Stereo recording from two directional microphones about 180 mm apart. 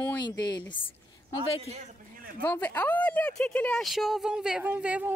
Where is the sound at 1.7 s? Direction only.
50° right (ahead or behind).